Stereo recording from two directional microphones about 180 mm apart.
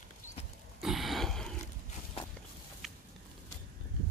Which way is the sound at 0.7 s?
Centre (ahead or behind).